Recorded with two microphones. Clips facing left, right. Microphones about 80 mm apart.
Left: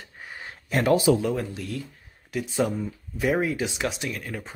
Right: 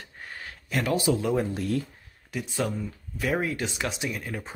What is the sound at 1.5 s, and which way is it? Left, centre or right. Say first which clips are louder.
Speech: right 5 dB; right.